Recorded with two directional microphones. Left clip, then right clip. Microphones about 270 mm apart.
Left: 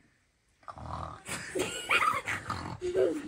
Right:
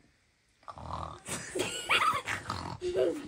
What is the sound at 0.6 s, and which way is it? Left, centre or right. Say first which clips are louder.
Grunt: even; centre.